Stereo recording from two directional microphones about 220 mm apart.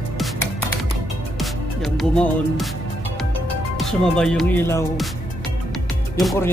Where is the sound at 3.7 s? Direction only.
Centre (ahead or behind).